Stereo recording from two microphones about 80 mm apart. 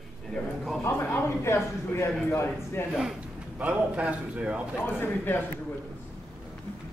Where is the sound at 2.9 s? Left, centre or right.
Centre.